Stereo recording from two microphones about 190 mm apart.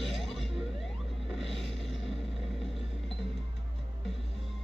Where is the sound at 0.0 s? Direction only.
Centre (ahead or behind).